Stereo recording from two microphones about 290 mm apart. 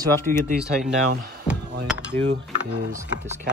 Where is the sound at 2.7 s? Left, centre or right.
Right.